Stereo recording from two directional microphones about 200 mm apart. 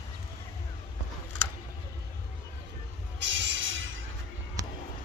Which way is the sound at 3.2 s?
65° right (ahead or behind).